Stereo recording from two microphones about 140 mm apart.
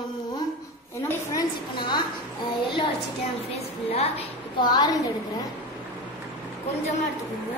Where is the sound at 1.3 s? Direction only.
35° left (ahead or behind).